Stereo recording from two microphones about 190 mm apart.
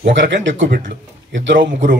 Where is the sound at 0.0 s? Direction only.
70° right (ahead or behind).